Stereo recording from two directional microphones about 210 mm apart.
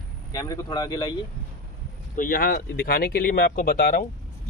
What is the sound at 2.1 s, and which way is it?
Speech, 40° left (ahead or behind).